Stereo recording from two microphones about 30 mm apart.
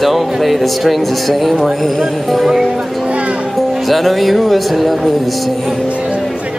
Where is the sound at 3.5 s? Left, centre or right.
Centre.